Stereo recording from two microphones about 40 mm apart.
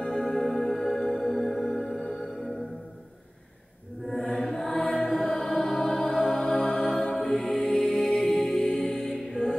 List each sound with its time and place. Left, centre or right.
0.0 s music: centre
4.1 s music: centre